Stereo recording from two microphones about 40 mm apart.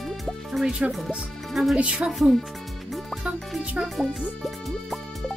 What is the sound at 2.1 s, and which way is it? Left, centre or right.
Speech, centre.